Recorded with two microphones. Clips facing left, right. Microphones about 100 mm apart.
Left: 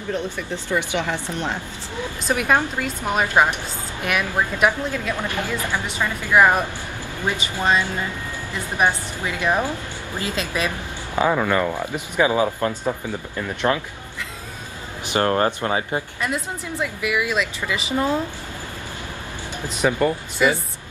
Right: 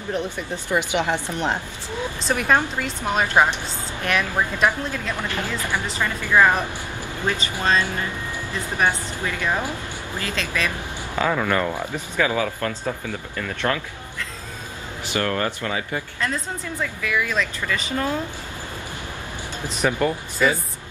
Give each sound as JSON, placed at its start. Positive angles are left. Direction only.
{"t": 0.1, "sound": "speech", "side_deg": -15}
{"t": 2.2, "sound": "a woman's voice", "side_deg": 5}
{"t": 11.9, "sound": "speech", "side_deg": 20}
{"t": 15.1, "sound": "speech", "side_deg": 30}
{"t": 16.8, "sound": "a woman's voice", "side_deg": 15}
{"t": 19.8, "sound": "a woman's voice", "side_deg": 5}